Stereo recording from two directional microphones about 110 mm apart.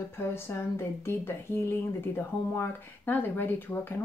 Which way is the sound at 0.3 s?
20° left (ahead or behind).